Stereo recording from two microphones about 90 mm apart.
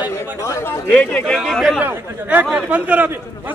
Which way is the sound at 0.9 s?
10° left (ahead or behind).